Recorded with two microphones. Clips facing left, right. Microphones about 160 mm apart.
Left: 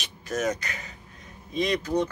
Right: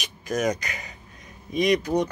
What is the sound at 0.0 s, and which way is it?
Music, 15° right (ahead or behind).